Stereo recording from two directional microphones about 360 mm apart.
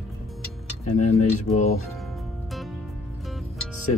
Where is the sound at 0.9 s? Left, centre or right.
Centre.